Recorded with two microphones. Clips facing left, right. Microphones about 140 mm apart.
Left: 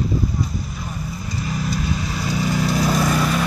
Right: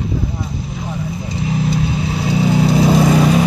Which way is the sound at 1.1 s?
25° right (ahead or behind).